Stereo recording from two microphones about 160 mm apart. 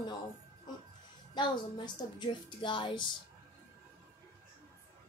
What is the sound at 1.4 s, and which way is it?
Speech, 30° left (ahead or behind).